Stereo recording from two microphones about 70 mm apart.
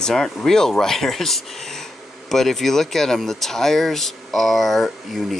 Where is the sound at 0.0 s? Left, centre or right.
Centre.